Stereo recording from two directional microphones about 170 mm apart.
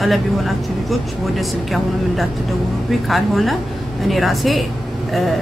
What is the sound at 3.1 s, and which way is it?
Speech, centre (ahead or behind).